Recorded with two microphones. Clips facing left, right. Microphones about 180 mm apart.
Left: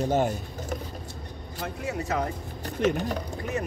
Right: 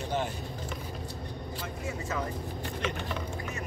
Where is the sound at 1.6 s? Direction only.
70° left (ahead or behind).